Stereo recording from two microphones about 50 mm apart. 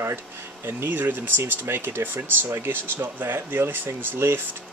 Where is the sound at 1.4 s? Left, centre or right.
Right.